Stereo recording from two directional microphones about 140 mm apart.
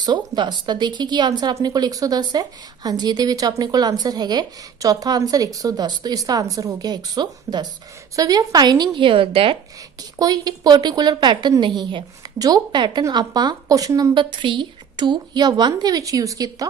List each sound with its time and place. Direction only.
0.0 s a woman's voice: 30° right (ahead or behind)
10.1 s a woman's voice: 30° right (ahead or behind)